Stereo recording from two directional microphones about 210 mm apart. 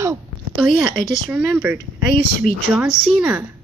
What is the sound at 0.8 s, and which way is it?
Speech, 5° right (ahead or behind).